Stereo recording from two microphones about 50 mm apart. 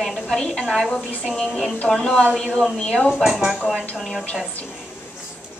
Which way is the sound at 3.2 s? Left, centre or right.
Centre.